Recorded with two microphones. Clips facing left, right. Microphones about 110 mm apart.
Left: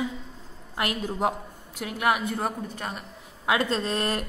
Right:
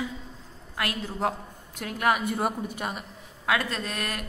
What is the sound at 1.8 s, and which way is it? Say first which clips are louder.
Speech: even; 5° left (ahead or behind).